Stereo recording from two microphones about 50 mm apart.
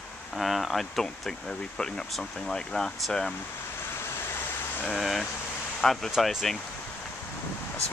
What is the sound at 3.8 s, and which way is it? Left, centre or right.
Vehicle, left.